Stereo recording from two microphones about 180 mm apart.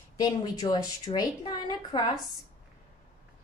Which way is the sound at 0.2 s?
20° left (ahead or behind).